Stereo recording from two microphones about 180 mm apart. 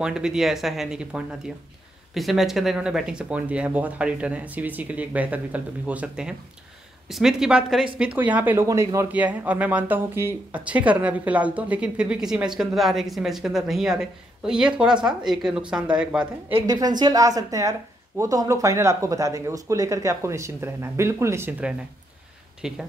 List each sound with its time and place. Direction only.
0.0 s a woman's voice: 5° right (ahead or behind)
16.5 s speech: 20° right (ahead or behind); by 22.8 s 5° right (ahead or behind)